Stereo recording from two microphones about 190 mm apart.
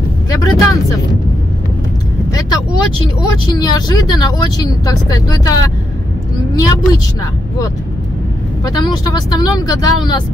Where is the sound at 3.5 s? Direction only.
20° left (ahead or behind).